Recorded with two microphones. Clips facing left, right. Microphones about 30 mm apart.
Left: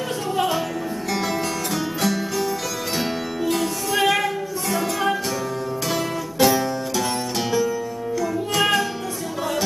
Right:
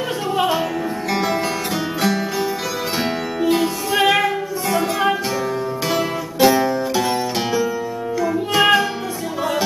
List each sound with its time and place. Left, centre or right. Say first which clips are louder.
2.0 s music: right 4 dB; centre